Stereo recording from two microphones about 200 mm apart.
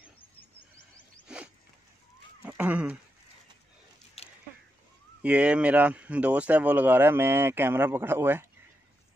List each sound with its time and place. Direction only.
1.2 s zipper: 5° right (ahead or behind)
2.4 s speech: 10° right (ahead or behind)
4.2 s a sound: 30° left (ahead or behind)
5.2 s speech: 5° right (ahead or behind)